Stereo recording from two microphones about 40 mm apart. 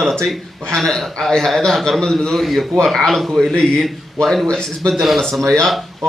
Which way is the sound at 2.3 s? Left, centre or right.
Centre.